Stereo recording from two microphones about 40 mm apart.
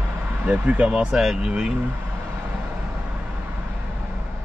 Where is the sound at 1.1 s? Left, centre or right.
Centre.